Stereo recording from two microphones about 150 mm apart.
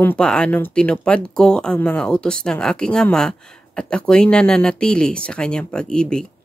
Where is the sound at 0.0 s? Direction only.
5° left (ahead or behind).